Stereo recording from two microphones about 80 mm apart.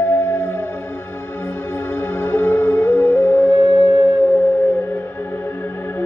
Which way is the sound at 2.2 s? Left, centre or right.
Left.